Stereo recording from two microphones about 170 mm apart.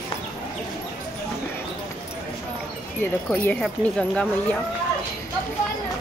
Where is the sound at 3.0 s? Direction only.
10° left (ahead or behind).